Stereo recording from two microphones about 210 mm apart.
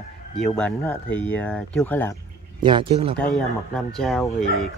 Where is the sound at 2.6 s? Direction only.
25° right (ahead or behind).